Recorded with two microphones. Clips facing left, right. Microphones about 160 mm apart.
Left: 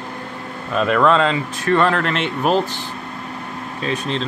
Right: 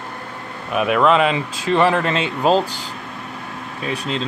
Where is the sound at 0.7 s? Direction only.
15° right (ahead or behind).